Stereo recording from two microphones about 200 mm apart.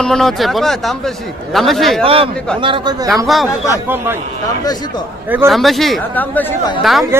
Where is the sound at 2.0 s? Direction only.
25° right (ahead or behind).